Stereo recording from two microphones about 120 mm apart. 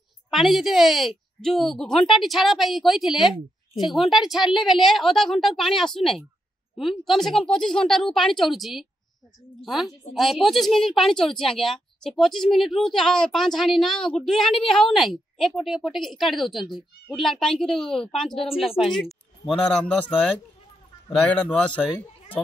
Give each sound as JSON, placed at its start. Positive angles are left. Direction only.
{"t": 0.3, "sound": "speech", "side_deg": 0}
{"t": 18.3, "sound": "speech", "side_deg": 50}
{"t": 18.8, "sound": "a man's voice", "side_deg": 0}